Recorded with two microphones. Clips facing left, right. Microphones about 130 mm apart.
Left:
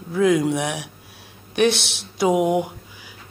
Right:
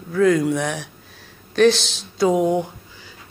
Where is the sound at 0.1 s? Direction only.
15° left (ahead or behind).